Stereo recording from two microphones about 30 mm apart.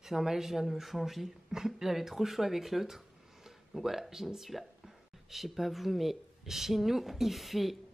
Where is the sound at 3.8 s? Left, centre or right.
Centre.